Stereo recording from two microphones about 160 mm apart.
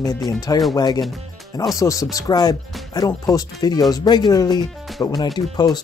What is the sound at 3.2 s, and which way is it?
Speech, 25° left (ahead or behind).